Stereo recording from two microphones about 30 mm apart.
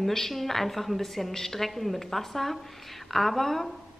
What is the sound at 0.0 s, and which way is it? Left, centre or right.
A woman's voice, centre.